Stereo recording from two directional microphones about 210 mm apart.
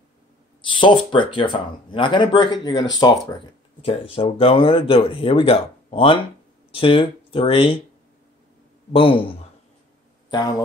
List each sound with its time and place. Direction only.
0.7 s speech: 25° left (ahead or behind)
8.9 s speech: 25° left (ahead or behind)